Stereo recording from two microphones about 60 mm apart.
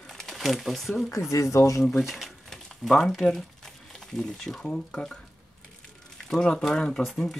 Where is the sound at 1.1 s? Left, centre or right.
Left.